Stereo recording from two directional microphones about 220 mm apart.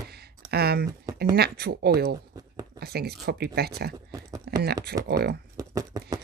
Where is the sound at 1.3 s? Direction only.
45° right (ahead or behind).